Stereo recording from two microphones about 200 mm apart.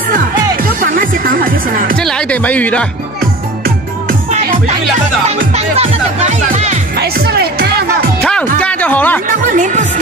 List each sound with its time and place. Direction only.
0.7 s music: 45° right (ahead or behind)
2.0 s speech: 5° left (ahead or behind)
4.3 s music: 35° right (ahead or behind)
5.2 s speech: 35° right (ahead or behind)
7.0 s music: 55° right (ahead or behind)
8.2 s music: 5° left (ahead or behind)
8.5 s speech: 5° left (ahead or behind)
9.6 s speech: 40° right (ahead or behind)